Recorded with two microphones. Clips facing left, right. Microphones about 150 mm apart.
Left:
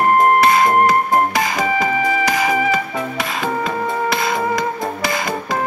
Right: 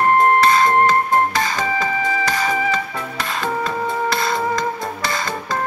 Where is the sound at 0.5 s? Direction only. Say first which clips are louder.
Left 1 dB; 15° left (ahead or behind).